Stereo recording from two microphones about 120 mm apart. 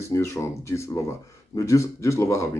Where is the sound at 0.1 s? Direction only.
25° left (ahead or behind).